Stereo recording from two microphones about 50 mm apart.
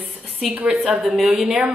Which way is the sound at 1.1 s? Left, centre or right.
Centre.